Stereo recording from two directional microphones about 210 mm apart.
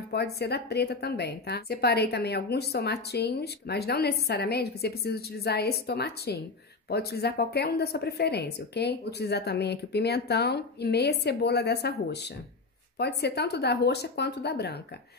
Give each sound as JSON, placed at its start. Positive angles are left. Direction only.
{"t": 0.1, "sound": "a woman's voice", "side_deg": 50}